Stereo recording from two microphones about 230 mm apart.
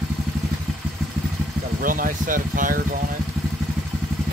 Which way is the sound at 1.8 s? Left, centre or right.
Right.